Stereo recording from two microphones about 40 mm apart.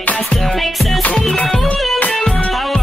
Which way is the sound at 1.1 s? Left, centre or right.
Centre.